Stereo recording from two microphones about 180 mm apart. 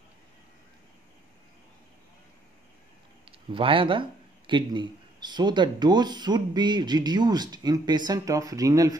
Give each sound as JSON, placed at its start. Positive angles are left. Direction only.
{"t": 3.3, "sound": "speech", "side_deg": -30}